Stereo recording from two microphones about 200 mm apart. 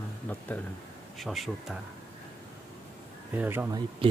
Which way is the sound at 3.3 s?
10° right (ahead or behind).